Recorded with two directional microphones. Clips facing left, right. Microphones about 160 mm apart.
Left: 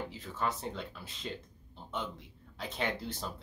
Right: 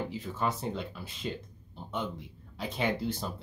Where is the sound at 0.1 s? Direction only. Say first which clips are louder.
Right 3 dB; 10° right (ahead or behind).